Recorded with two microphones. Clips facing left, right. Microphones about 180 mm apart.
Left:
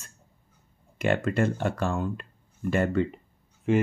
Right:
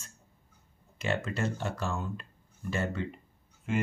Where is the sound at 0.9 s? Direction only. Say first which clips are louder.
Left 8 dB; 55° left (ahead or behind).